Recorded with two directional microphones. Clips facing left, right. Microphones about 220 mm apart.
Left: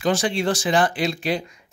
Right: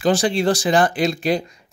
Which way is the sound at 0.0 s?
35° right (ahead or behind).